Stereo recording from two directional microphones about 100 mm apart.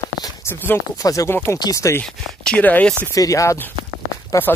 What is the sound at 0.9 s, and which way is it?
Speech, 35° left (ahead or behind).